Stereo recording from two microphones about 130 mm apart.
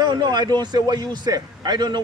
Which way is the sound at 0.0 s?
35° right (ahead or behind).